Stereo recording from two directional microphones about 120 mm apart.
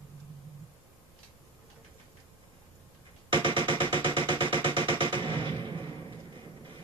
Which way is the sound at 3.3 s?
45° right (ahead or behind).